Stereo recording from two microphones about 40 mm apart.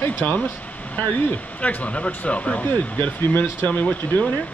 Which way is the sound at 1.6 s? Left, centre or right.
Left.